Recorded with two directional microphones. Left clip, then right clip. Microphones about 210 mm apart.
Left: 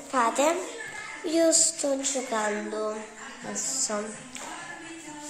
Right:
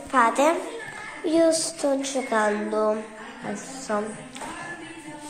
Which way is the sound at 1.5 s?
20° left (ahead or behind).